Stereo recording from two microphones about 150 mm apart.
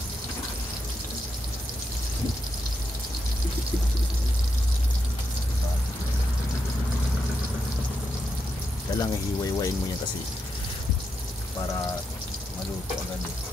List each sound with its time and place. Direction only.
8.9 s pour: 25° left (ahead or behind)